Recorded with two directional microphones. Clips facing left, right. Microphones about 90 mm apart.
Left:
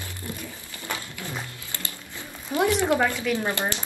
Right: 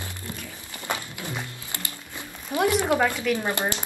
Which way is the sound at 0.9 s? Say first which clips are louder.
Right 2 dB; 20° right (ahead or behind).